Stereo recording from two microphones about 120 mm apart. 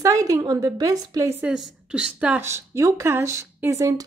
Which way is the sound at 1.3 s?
15° right (ahead or behind).